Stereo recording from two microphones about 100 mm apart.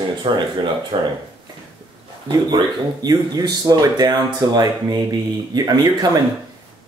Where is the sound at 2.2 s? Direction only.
45° right (ahead or behind).